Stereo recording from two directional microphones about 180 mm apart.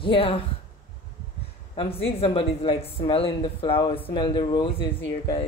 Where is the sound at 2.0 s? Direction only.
30° left (ahead or behind).